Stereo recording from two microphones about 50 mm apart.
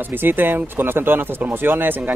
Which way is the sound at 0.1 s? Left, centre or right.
Right.